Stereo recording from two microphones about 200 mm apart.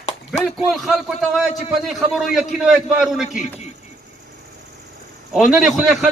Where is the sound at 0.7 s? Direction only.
Centre (ahead or behind).